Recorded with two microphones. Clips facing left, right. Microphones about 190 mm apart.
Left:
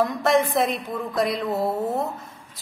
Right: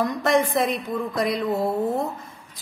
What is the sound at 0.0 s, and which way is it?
A woman's voice, centre (ahead or behind).